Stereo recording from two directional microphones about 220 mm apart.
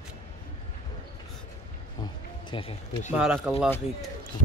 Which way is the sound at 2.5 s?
20° left (ahead or behind).